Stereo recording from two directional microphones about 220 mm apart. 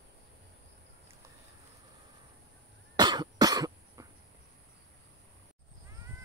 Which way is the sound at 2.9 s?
20° right (ahead or behind).